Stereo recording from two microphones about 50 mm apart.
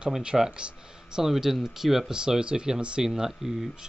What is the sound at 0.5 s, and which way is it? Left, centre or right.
Speech, centre.